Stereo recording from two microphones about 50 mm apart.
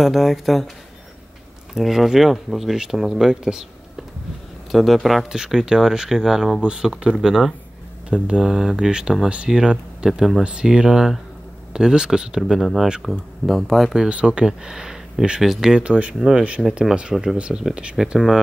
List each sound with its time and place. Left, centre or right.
0.0 s speech: centre
1.7 s speech: centre
4.7 s speech: centre
5.3 s speech: centre
8.1 s speech: centre
13.9 s speech: centre
15.8 s speech: right
16.2 s speech: centre
17.4 s speech: right
17.9 s speech: centre